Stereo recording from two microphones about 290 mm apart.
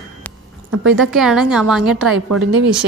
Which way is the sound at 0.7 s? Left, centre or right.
Right.